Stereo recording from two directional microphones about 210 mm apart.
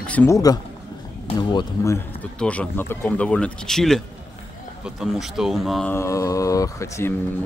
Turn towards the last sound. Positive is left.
turn(degrees=15)  # may be behind; listen again after turning